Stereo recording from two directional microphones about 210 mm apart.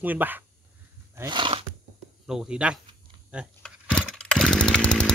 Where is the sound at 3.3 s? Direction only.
5° left (ahead or behind).